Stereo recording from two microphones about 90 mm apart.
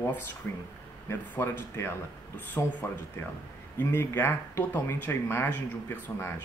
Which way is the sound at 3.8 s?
25° left (ahead or behind).